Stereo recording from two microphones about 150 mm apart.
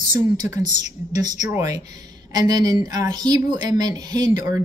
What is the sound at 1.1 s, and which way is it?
A woman's voice, 25° right (ahead or behind).